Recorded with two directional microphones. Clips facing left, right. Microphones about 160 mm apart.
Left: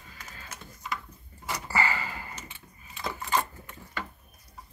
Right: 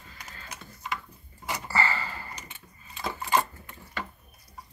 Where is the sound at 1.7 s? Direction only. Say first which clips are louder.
Even; 15° left (ahead or behind).